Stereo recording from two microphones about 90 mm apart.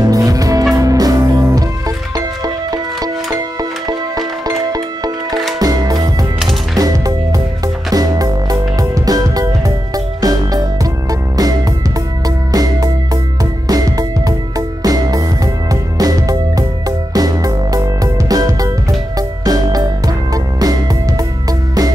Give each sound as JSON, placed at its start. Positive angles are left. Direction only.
{"t": 0.1, "sound": "music", "side_deg": -40}
{"t": 12.5, "sound": "music", "side_deg": -45}